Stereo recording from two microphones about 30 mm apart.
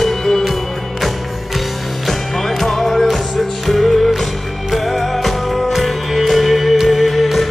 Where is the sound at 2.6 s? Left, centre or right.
Centre.